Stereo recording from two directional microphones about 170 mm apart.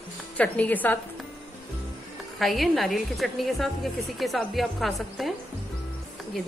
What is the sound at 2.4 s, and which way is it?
A woman's voice, centre (ahead or behind).